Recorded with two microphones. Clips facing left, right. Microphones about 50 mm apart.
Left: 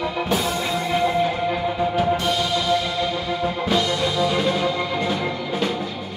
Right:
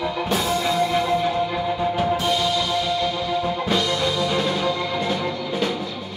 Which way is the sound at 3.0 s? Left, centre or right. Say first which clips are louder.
Even; centre.